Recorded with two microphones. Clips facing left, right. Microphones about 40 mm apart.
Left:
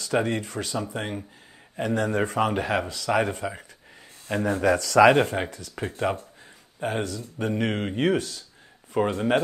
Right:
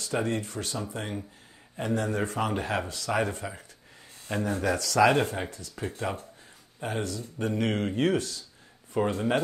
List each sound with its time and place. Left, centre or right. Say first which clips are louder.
0.0 s speech: left 4 dB; left
7.4 s speech: left 2 dB; left
8.2 s speech: left 1 dB; left
9.1 s speech: left 5 dB; left